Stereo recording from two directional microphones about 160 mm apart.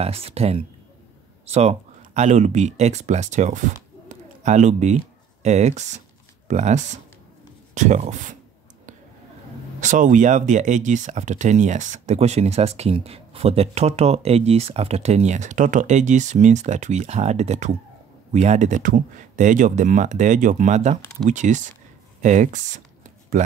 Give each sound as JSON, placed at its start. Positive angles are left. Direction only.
{"t": 0.0, "sound": "speech", "side_deg": -40}
{"t": 9.8, "sound": "speech", "side_deg": -50}
{"t": 22.2, "sound": "a sound", "side_deg": -50}